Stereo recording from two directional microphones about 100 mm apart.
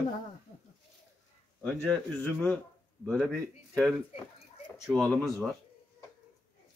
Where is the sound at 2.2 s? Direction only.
15° left (ahead or behind).